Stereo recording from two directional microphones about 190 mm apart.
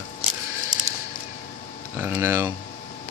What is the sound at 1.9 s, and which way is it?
Speech, 15° right (ahead or behind).